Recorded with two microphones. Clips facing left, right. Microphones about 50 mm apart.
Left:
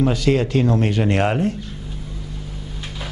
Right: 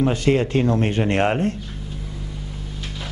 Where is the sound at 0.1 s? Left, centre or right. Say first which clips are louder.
Left 1 dB; right.